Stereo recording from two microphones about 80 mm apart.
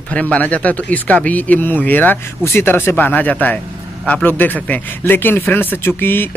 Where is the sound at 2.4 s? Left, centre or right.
Left.